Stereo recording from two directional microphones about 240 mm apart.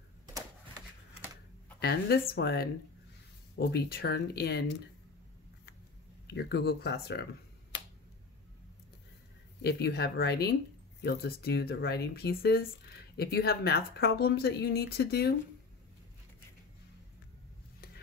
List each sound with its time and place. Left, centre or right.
1.8 s speech: left
6.3 s speech: left
9.6 s speech: left